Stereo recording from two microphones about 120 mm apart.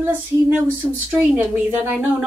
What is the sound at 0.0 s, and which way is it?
A woman's voice, 15° right (ahead or behind).